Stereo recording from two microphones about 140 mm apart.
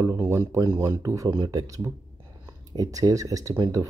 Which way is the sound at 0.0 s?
20° right (ahead or behind).